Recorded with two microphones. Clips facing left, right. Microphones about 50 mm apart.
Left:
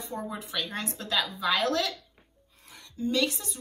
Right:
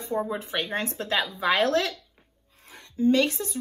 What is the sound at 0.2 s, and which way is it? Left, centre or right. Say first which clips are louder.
A woman's voice: right 5 dB; right.